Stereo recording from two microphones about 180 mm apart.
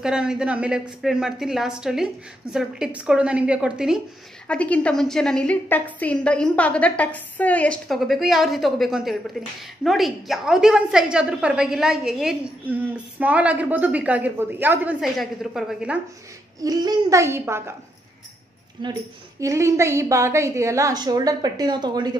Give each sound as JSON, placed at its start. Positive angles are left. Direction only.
{"t": 0.0, "sound": "a woman's voice", "side_deg": -5}
{"t": 4.5, "sound": "a woman's voice", "side_deg": 5}
{"t": 16.5, "sound": "a woman's voice", "side_deg": -20}
{"t": 19.4, "sound": "a woman's voice", "side_deg": -15}